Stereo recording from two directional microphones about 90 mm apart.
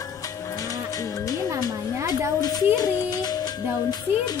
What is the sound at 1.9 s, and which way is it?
Speech, 35° right (ahead or behind).